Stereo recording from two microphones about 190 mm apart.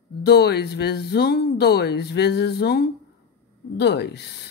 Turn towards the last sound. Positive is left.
turn(degrees=60)  # may be behind; listen again after turning